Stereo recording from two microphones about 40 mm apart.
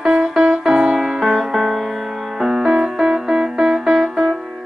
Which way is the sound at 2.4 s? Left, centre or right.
Centre.